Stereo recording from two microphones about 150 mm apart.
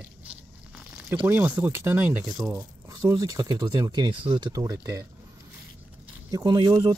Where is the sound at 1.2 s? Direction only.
10° right (ahead or behind).